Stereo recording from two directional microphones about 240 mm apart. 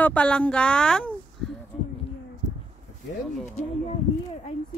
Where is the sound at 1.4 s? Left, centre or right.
Centre.